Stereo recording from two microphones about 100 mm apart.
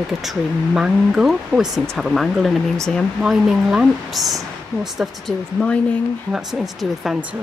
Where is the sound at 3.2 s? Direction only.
5° right (ahead or behind).